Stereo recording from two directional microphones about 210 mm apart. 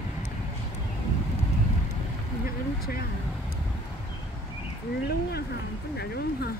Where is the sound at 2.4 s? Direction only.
45° left (ahead or behind).